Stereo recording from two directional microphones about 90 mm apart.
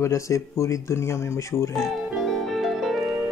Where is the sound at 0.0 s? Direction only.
30° left (ahead or behind).